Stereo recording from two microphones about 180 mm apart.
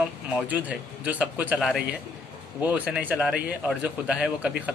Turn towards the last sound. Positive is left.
turn(degrees=-5)  # may be behind; listen again after turning